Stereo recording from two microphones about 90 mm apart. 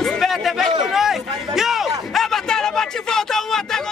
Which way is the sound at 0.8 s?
5° right (ahead or behind).